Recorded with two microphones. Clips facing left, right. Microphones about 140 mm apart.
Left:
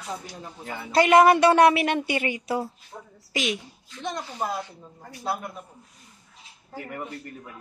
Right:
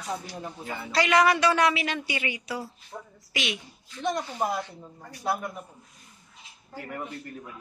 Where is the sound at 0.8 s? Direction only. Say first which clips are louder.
Left 6 dB; 50° left (ahead or behind).